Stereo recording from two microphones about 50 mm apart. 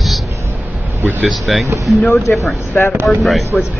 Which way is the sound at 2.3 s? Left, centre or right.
Left.